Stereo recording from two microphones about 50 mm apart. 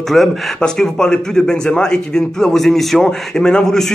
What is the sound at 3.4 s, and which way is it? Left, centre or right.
Speech, centre.